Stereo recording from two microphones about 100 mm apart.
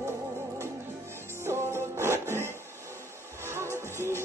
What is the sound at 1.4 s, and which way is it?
Music, 25° right (ahead or behind).